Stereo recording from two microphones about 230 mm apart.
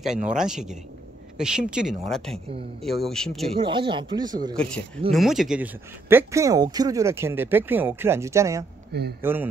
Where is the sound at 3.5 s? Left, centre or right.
Right.